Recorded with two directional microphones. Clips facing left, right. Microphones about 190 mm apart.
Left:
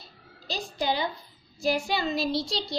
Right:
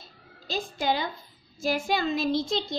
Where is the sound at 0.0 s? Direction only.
50° right (ahead or behind).